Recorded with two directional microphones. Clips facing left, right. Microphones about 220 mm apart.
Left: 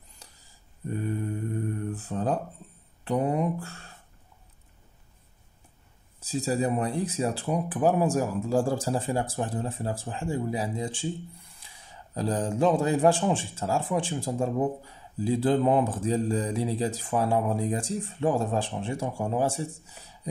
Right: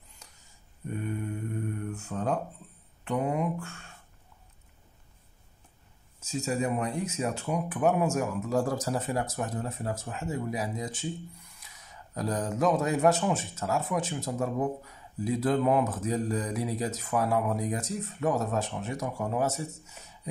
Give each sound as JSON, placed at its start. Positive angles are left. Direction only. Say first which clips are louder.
{"t": 0.2, "sound": "mantra", "louder": "left 3 dB", "side_deg": 35}
{"t": 3.1, "sound": "speech", "louder": "left 3 dB", "side_deg": 35}
{"t": 6.1, "sound": "speech", "louder": "left 3 dB", "side_deg": 35}